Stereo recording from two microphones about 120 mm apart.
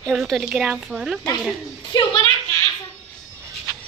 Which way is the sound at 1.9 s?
40° left (ahead or behind).